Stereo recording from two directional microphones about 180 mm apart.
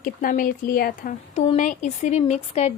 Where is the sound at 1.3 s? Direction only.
40° left (ahead or behind).